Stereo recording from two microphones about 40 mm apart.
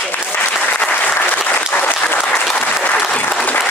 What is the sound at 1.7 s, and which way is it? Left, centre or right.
Applause, left.